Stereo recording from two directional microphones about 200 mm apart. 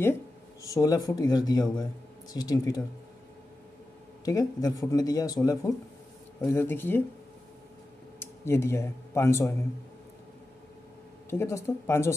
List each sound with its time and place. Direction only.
0.6 s speech: 15° left (ahead or behind)
4.2 s speech: 20° left (ahead or behind)
8.2 s speech: 15° left (ahead or behind)
11.2 s speech: 15° left (ahead or behind)